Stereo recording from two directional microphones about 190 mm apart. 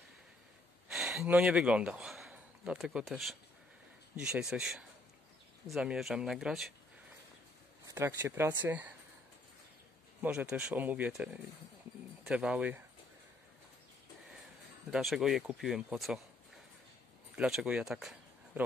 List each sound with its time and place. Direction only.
0.9 s speech: 5° right (ahead or behind)
7.8 s speech: 15° right (ahead or behind)
10.2 s speech: 5° right (ahead or behind)
14.9 s speech: centre (ahead or behind)
17.4 s speech: 5° right (ahead or behind)